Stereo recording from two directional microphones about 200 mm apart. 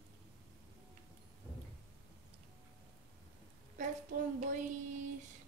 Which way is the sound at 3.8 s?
40° right (ahead or behind).